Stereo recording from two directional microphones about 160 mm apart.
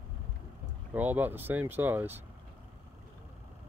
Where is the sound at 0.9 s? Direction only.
10° right (ahead or behind).